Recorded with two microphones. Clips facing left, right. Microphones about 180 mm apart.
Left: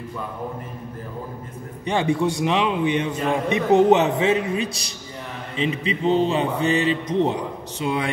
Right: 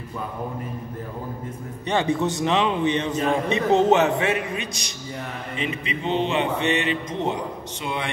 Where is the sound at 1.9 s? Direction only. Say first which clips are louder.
Left 1 dB; 10° left (ahead or behind).